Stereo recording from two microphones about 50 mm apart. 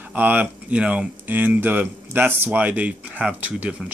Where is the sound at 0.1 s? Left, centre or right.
Right.